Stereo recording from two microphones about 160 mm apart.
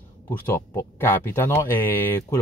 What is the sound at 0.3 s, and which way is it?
Speech, 15° left (ahead or behind).